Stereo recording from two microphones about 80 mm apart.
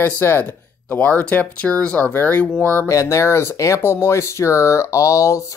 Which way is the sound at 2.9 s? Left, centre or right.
Left.